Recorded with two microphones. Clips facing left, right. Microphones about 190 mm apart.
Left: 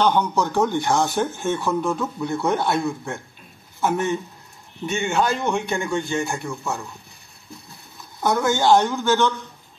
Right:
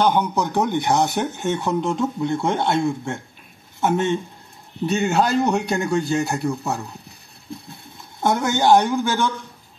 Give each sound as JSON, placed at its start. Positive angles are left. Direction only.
{"t": 0.0, "sound": "speech", "side_deg": -10}
{"t": 4.8, "sound": "a man's voice", "side_deg": -40}
{"t": 8.2, "sound": "speech", "side_deg": -25}